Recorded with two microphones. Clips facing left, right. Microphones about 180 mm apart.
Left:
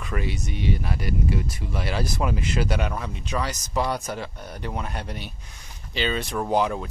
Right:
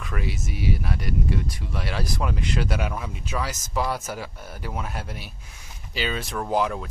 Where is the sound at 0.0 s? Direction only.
Centre (ahead or behind).